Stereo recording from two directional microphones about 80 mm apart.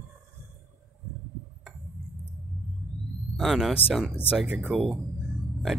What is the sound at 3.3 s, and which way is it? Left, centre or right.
Speech, centre.